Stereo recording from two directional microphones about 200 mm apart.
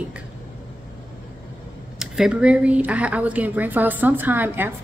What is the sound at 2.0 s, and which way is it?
Speech, 5° right (ahead or behind).